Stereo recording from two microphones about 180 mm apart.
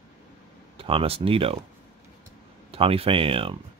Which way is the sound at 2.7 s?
30° right (ahead or behind).